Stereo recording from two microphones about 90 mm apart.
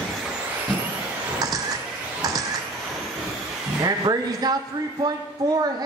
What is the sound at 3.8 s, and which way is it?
Speech, 50° right (ahead or behind).